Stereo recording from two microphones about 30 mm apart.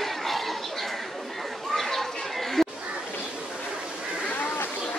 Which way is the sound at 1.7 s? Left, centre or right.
Centre.